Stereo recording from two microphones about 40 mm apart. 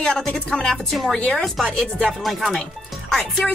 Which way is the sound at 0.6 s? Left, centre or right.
Centre.